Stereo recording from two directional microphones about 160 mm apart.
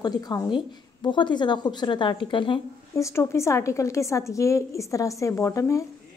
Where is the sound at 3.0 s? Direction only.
15° left (ahead or behind).